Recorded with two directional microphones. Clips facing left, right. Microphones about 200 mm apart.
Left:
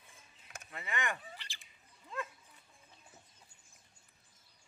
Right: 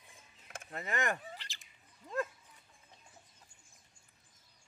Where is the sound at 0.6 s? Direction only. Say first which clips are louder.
Right 4 dB; 40° right (ahead or behind).